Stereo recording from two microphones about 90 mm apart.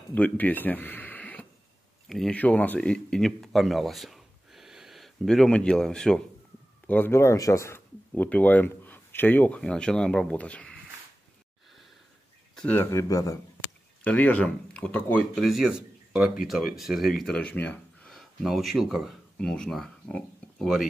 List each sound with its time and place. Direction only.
0.1 s speech: 20° left (ahead or behind)
2.0 s speech: 5° left (ahead or behind)
2.3 s speech: 15° left (ahead or behind)
6.9 s speech: 25° left (ahead or behind)
8.1 s speech: 15° left (ahead or behind)
12.6 s speech: 25° left (ahead or behind)
14.0 s speech: 15° left (ahead or behind)
15.3 s speech: centre (ahead or behind); by 17.7 s 15° left (ahead or behind)
18.0 s speech: centre (ahead or behind)
19.3 s speech: 10° left (ahead or behind)